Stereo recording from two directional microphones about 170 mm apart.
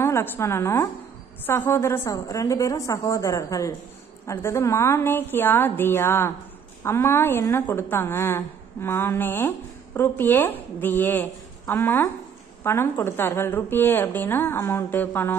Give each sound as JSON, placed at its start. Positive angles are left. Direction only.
{"t": 0.0, "sound": "a woman's voice", "side_deg": 15}